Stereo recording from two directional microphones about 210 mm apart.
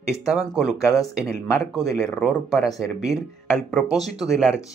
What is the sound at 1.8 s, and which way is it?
Speech, centre (ahead or behind).